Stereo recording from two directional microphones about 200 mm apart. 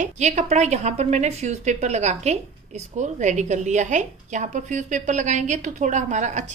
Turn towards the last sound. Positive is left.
turn(degrees=-35)  # may be behind; listen again after turning